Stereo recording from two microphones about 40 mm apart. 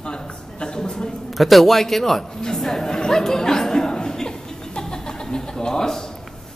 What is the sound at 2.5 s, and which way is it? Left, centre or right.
Chatter, centre.